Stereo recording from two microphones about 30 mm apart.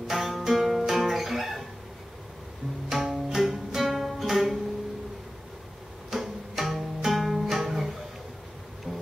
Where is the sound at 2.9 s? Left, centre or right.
Centre.